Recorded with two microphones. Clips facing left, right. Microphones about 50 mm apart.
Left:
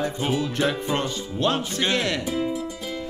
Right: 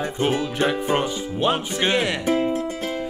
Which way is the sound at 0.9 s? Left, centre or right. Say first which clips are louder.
Right 3 dB; centre.